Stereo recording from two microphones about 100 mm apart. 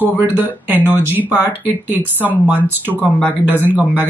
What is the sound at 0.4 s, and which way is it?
Speech, 20° right (ahead or behind).